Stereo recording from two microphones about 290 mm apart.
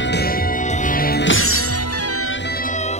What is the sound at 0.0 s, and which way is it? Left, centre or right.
Music, left.